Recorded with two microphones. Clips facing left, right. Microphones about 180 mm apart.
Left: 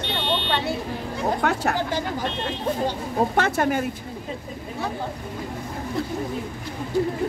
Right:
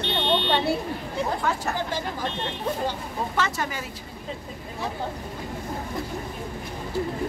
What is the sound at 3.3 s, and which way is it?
Speech, 55° left (ahead or behind).